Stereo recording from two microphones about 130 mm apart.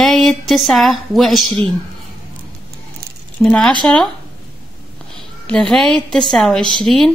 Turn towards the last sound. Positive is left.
turn(degrees=0)  # may be behind; listen again after turning